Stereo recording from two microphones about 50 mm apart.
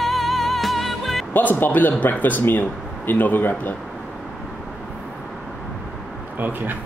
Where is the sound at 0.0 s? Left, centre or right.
Centre.